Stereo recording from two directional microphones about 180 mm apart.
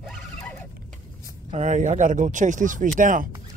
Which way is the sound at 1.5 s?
45° right (ahead or behind).